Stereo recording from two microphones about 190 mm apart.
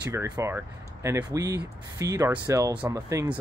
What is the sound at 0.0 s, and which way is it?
Speech, 15° right (ahead or behind).